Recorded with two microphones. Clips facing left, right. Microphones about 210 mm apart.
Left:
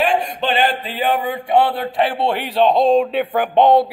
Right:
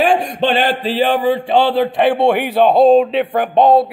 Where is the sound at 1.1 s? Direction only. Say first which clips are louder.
Right 3 dB; 30° right (ahead or behind).